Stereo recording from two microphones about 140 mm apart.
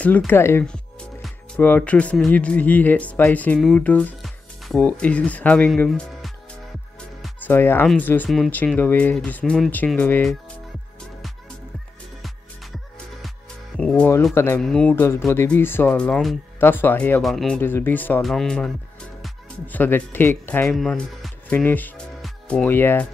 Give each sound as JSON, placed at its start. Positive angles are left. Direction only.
{"t": 0.0, "sound": "speech", "side_deg": 10}
{"t": 5.9, "sound": "speech", "side_deg": 0}
{"t": 7.4, "sound": "speech", "side_deg": 15}
{"t": 13.7, "sound": "speech", "side_deg": 10}
{"t": 14.3, "sound": "speech", "side_deg": 20}
{"t": 14.6, "sound": "speech", "side_deg": 5}
{"t": 15.0, "sound": "speech", "side_deg": 20}
{"t": 16.5, "sound": "speech", "side_deg": 15}
{"t": 17.2, "sound": "speech", "side_deg": 0}
{"t": 17.6, "sound": "speech", "side_deg": 15}
{"t": 18.2, "sound": "speech", "side_deg": 0}
{"t": 20.7, "sound": "speech", "side_deg": 0}
{"t": 22.2, "sound": "music", "side_deg": 5}
{"t": 22.7, "sound": "speech", "side_deg": 15}